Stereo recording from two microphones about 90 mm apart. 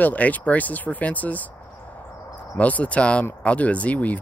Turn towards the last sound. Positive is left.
turn(degrees=15)  # may be behind; listen again after turning